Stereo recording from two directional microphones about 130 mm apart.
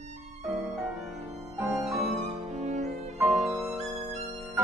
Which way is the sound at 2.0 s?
60° right (ahead or behind).